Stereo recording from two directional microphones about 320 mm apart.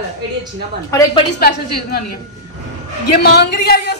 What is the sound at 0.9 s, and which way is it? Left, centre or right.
Speech, centre.